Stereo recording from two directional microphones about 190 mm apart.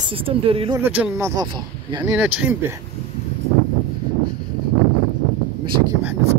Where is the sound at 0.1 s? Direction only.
30° right (ahead or behind).